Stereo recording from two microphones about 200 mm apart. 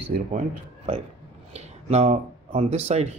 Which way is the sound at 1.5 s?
30° right (ahead or behind).